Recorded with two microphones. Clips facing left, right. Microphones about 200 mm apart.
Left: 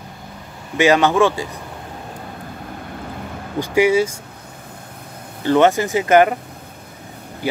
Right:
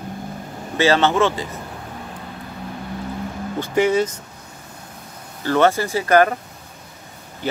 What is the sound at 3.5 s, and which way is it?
Speech, 10° left (ahead or behind).